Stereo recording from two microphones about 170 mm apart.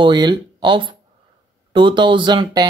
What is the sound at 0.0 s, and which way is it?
Speech, 25° right (ahead or behind).